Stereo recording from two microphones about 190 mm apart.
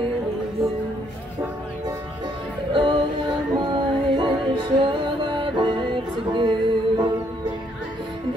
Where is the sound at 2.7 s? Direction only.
25° right (ahead or behind).